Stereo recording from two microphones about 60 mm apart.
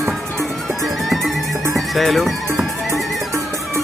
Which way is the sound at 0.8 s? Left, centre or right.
Centre.